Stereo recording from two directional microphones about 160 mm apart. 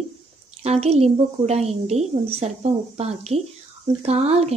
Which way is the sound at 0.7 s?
40° right (ahead or behind).